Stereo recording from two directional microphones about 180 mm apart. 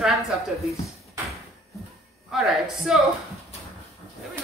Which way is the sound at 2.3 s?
Centre (ahead or behind).